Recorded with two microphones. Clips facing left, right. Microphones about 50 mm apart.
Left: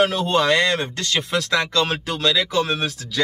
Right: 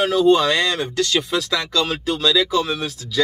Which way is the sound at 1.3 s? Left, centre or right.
Left.